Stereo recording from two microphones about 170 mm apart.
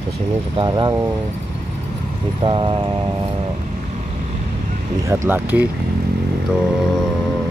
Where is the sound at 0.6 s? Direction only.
25° right (ahead or behind).